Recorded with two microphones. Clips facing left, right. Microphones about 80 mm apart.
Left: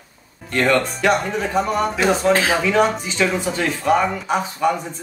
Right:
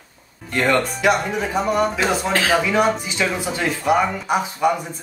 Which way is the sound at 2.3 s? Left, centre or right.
Left.